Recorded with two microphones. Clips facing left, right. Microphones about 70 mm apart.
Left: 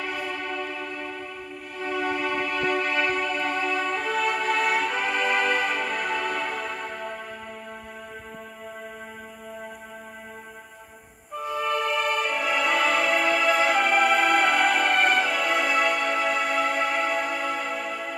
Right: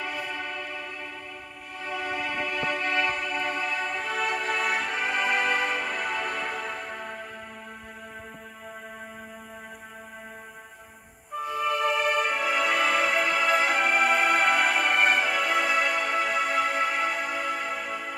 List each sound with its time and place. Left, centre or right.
0.3 s music: right
2.0 s music: right
11.7 s music: centre